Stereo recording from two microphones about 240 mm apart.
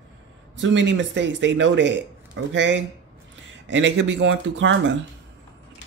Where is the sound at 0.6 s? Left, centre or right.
Right.